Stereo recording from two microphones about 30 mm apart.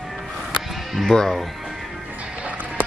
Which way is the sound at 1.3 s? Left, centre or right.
Centre.